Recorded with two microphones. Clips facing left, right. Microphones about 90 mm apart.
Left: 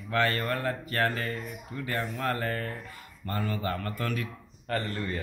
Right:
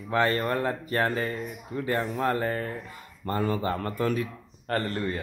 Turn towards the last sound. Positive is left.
turn(degrees=-35)  # may be behind; listen again after turning